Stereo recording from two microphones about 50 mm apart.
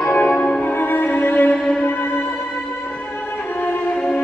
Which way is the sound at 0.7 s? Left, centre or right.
Left.